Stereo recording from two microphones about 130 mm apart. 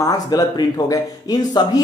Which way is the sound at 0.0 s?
30° left (ahead or behind).